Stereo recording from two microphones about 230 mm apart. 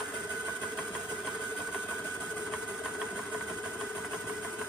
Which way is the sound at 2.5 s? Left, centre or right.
Centre.